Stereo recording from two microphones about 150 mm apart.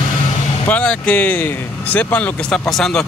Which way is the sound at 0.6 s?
10° left (ahead or behind).